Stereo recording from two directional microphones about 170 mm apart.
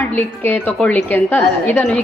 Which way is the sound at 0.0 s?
10° left (ahead or behind).